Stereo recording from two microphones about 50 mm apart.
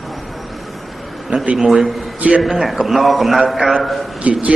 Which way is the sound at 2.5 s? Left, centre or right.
Centre.